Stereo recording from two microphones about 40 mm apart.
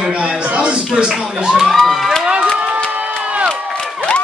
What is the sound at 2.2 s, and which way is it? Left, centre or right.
Crowd, right.